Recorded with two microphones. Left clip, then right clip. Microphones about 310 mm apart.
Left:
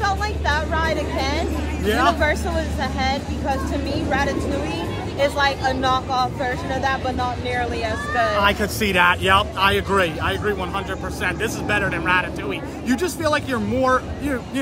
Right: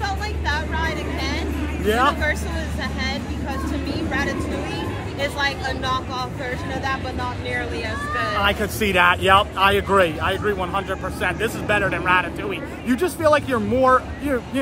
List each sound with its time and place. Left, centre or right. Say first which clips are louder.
0.0 s vehicle: left 4 dB; left
1.9 s speech: even; centre
2.8 s vehicle: left 2 dB; left
4.1 s speech: left 4 dB; left
8.5 s speech: left 1 dB; centre